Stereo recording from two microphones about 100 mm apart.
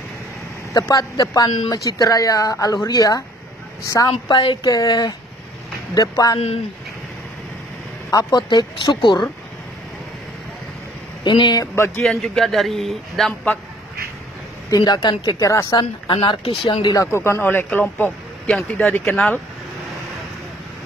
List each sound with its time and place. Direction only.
0.7 s speech: 35° left (ahead or behind)
4.1 s speech: 65° left (ahead or behind)
4.6 s speech: 40° left (ahead or behind)
8.1 s speech: 40° left (ahead or behind)
8.5 s speech: 50° left (ahead or behind)
11.2 s speech: 50° left (ahead or behind)
11.6 s a man's voice: 25° left (ahead or behind)
12.0 s a man's voice: centre (ahead or behind)
14.7 s speech: 45° left (ahead or behind)
16.1 s speech: 55° left (ahead or behind)
16.8 s a man's voice: 35° left (ahead or behind)
18.7 s speech: 15° left (ahead or behind)
19.0 s a man's voice: 5° left (ahead or behind)